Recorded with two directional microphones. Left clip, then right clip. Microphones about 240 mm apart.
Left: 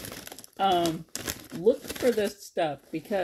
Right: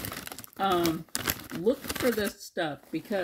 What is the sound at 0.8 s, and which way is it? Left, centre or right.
Speech, right.